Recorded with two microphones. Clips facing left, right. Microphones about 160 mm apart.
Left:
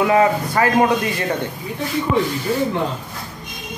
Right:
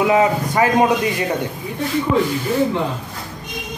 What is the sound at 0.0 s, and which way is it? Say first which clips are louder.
Speech: even; 15° right (ahead or behind).